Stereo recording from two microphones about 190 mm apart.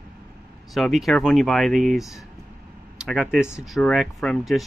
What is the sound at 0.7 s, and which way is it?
Speech, centre (ahead or behind).